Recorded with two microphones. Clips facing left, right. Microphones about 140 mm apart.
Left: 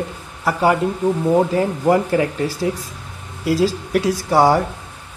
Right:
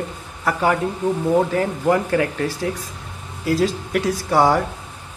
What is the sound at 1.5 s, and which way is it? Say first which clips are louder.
Speech: left 2 dB; 15° left (ahead or behind).